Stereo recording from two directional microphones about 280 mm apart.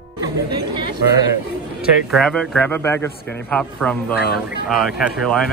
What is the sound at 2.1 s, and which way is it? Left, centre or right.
A man's voice, centre.